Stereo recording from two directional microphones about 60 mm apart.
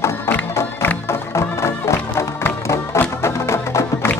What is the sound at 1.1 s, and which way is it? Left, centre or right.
Music, left.